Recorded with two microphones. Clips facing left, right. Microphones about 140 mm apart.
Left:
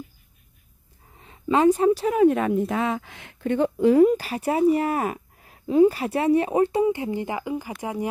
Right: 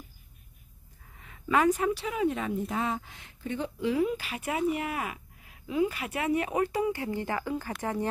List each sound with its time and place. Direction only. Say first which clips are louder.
1.1 s speech: left 5 dB; 30° left (ahead or behind); by 8.1 s 10° left (ahead or behind)